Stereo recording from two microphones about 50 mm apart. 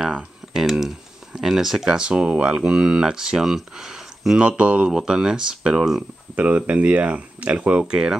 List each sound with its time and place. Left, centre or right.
0.5 s a sound: centre
1.9 s speech: centre
4.4 s speech: right
6.3 s speech: right
7.8 s speech: centre